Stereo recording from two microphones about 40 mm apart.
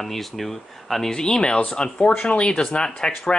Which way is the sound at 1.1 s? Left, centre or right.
Centre.